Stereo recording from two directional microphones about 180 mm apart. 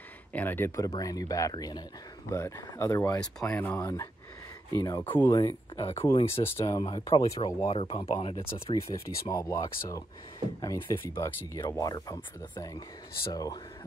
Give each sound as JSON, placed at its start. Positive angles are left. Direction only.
{"t": 0.3, "sound": "speech", "side_deg": 10}
{"t": 3.2, "sound": "speech", "side_deg": 5}
{"t": 6.4, "sound": "speech", "side_deg": 15}
{"t": 8.8, "sound": "speech", "side_deg": 20}